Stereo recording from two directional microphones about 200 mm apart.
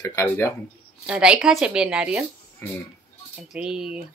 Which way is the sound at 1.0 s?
5° right (ahead or behind).